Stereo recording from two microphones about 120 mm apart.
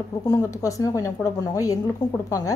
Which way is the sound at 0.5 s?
25° left (ahead or behind).